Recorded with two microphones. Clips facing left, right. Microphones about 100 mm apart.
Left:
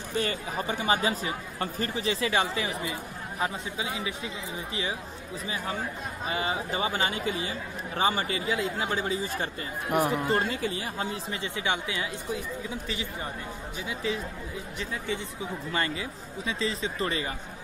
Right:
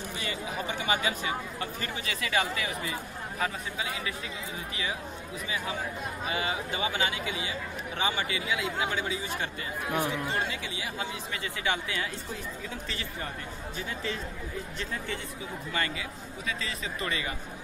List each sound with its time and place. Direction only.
0.2 s speech: 45° left (ahead or behind); by 4.1 s 20° left (ahead or behind)
6.2 s speech: 30° left (ahead or behind)
11.4 s speech: 20° left (ahead or behind)
13.8 s speech: 10° left (ahead or behind)
15.7 s speech: 30° left (ahead or behind)